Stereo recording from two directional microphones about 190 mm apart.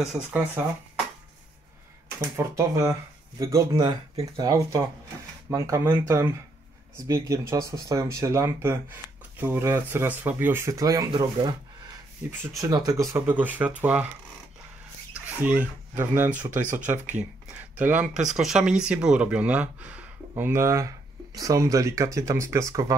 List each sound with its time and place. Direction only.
0.0 s speech: 5° right (ahead or behind)
2.1 s speech: 15° right (ahead or behind)
15.2 s speech: 10° right (ahead or behind)